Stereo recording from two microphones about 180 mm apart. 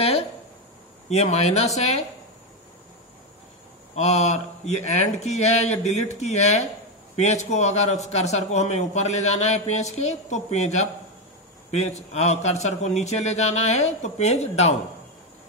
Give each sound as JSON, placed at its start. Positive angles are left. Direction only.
{"t": 1.0, "sound": "a man's voice", "side_deg": 35}
{"t": 3.9, "sound": "a man's voice", "side_deg": 40}